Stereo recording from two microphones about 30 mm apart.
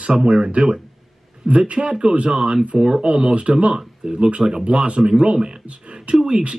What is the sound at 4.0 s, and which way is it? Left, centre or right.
Speech, right.